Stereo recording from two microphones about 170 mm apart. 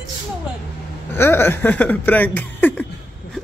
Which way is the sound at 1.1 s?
15° left (ahead or behind).